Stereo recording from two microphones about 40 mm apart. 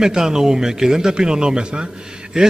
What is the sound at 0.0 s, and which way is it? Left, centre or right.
A man's voice, centre.